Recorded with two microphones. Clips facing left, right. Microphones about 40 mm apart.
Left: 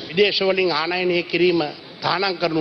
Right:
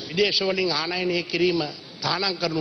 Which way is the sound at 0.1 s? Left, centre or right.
Centre.